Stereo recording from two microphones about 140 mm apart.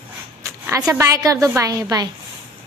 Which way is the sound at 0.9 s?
20° right (ahead or behind).